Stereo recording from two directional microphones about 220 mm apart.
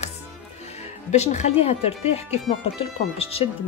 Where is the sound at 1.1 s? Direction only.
30° left (ahead or behind).